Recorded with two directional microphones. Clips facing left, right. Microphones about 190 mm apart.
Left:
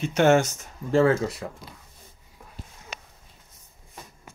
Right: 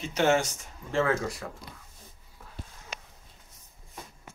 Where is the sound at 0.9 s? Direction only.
30° left (ahead or behind).